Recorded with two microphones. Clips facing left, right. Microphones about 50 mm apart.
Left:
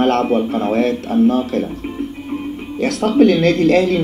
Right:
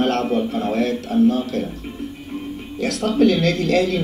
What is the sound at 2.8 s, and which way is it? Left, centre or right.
Speech, left.